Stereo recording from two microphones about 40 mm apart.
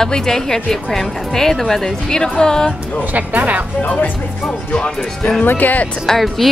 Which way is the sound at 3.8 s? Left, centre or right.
Left.